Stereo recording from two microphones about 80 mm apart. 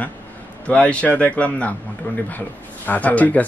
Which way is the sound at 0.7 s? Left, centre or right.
Centre.